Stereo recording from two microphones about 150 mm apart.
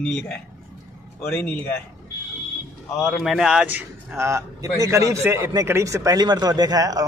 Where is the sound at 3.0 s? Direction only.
Centre (ahead or behind).